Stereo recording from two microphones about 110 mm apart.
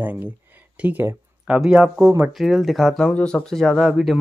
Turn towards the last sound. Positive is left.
turn(degrees=0)  # may be behind; listen again after turning